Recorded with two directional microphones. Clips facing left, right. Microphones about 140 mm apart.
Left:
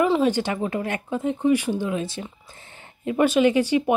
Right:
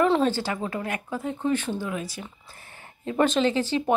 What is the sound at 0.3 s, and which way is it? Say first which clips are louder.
Speech: left 4 dB; 20° left (ahead or behind).